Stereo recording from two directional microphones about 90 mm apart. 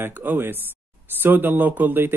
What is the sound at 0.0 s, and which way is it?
Speech, 20° right (ahead or behind).